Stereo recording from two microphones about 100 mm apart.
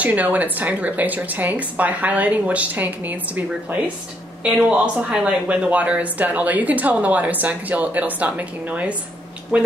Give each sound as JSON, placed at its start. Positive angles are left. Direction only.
{"t": 0.0, "sound": "speech", "side_deg": -15}